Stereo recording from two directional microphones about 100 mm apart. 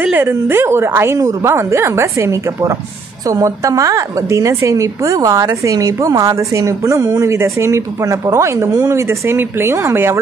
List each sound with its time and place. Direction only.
0.0 s a woman's voice: 20° right (ahead or behind)